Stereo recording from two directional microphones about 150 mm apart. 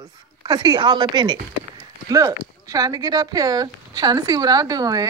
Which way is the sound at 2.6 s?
25° right (ahead or behind).